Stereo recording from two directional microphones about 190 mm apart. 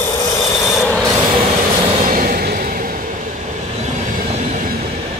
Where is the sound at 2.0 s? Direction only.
45° right (ahead or behind).